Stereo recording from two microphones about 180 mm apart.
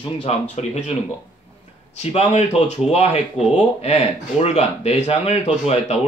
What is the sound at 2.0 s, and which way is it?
Speech, 35° left (ahead or behind).